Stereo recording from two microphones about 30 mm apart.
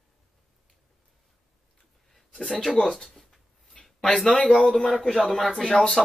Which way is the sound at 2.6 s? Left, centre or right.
Centre.